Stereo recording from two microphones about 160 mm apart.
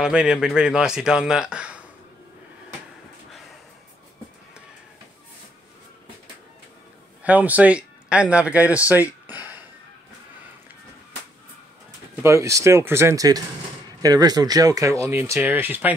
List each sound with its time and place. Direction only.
0.0 s speech: 5° right (ahead or behind)
7.2 s speech: 10° right (ahead or behind)
9.3 s a sound: 10° right (ahead or behind)
12.2 s speech: 20° right (ahead or behind)